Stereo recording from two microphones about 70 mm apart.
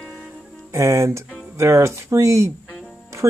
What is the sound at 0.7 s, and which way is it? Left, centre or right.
Speech, right.